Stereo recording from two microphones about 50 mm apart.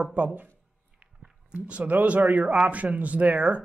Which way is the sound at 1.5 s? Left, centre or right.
Right.